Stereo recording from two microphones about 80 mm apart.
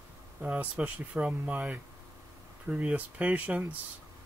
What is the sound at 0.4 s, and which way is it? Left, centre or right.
Speech, centre.